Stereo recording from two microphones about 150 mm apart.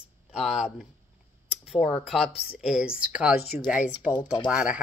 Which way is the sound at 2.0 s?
5° right (ahead or behind).